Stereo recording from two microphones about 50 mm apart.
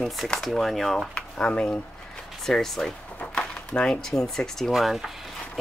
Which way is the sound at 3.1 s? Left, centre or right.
Left.